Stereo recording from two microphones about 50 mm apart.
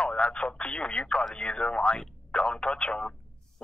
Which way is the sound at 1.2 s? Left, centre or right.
Centre.